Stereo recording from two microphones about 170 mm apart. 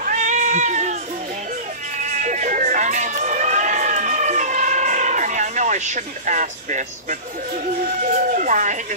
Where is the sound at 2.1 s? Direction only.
45° right (ahead or behind).